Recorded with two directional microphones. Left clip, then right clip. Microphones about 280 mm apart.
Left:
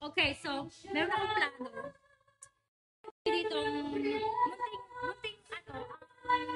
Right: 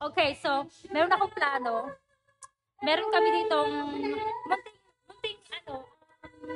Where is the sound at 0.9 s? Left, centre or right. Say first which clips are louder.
Right 6 dB; centre.